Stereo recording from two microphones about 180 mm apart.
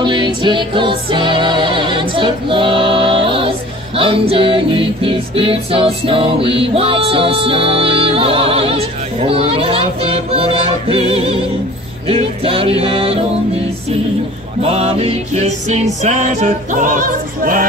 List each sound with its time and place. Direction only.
0.0 s music: 25° right (ahead or behind)
14.6 s music: 35° right (ahead or behind)